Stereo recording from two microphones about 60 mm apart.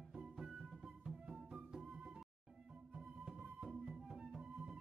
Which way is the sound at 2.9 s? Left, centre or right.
Centre.